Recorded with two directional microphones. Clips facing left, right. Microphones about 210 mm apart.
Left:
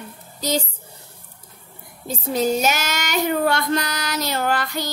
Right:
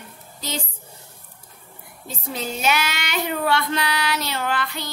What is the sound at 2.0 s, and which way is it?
Child singing, 40° left (ahead or behind).